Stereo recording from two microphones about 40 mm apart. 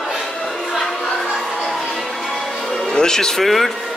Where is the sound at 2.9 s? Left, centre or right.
Centre.